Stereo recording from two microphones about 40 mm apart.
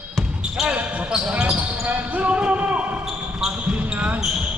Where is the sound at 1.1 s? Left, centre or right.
Right.